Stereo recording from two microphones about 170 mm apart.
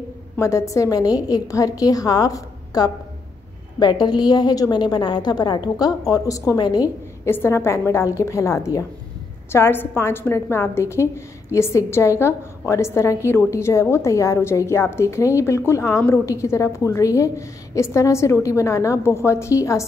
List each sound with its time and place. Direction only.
0.4 s a woman's voice: 20° left (ahead or behind)